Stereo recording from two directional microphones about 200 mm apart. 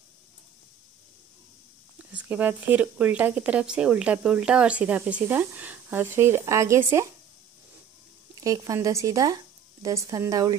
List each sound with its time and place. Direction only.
2.0 s speech: 5° right (ahead or behind)
8.4 s speech: 15° right (ahead or behind)